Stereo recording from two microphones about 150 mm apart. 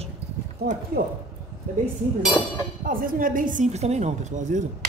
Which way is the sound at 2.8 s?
70° right (ahead or behind).